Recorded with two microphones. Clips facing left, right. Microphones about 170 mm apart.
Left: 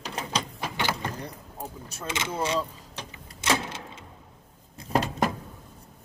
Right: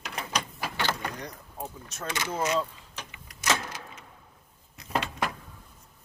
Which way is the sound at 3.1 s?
25° left (ahead or behind).